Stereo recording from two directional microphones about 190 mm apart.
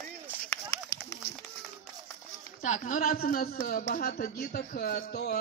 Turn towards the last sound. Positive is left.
turn(degrees=55)  # may be behind; listen again after turning